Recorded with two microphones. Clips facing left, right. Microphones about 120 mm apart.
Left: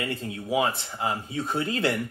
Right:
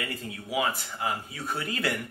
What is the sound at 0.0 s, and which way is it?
Speech, 25° left (ahead or behind).